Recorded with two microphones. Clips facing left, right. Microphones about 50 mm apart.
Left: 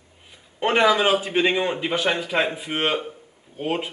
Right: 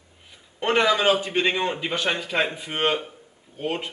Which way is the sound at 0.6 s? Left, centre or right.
Centre.